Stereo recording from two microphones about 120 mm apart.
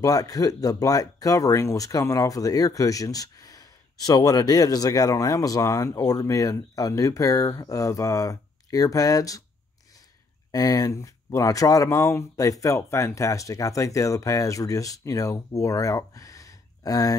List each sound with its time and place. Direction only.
0.0 s speech: 30° left (ahead or behind)
10.5 s speech: 30° left (ahead or behind)